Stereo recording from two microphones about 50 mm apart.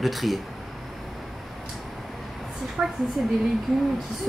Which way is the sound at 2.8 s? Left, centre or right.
Right.